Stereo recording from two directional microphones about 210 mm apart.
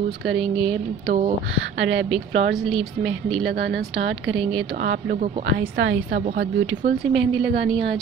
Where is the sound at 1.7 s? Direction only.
60° right (ahead or behind).